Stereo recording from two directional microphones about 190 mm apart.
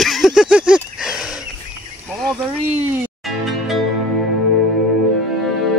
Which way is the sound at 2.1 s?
Centre (ahead or behind).